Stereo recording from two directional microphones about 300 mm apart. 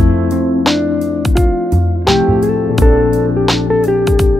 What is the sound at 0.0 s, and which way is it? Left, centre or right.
Music, centre.